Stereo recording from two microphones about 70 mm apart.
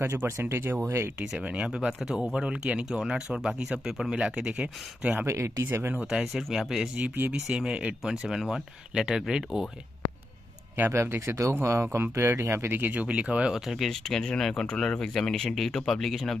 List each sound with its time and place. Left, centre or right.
0.0 s speech: right
1.2 s speech: centre
5.2 s speech: right
5.9 s speech: centre
6.3 s speech: centre
7.0 s speech: right
7.4 s speech: centre
10.8 s speech: right; by 13.6 s centre
13.7 s speech: centre